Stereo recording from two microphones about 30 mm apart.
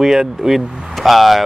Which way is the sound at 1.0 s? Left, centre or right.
Centre.